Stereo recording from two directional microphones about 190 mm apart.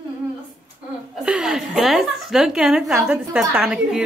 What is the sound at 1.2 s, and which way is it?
A woman's voice, 5° right (ahead or behind).